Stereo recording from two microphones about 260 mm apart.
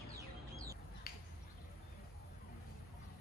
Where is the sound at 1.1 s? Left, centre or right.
Left.